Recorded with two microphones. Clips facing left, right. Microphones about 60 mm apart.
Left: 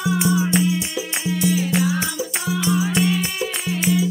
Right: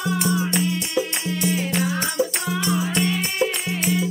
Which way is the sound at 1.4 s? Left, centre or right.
Right.